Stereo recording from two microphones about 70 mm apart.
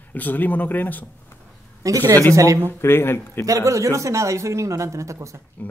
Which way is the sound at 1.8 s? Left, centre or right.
Right.